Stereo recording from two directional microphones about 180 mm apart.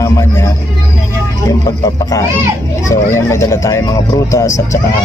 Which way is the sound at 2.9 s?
15° left (ahead or behind).